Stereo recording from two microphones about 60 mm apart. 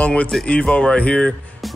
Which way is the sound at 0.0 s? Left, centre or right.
Left.